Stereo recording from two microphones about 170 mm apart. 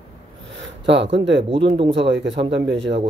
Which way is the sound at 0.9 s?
90° right.